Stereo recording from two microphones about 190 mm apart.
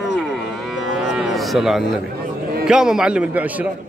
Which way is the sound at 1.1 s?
Centre (ahead or behind).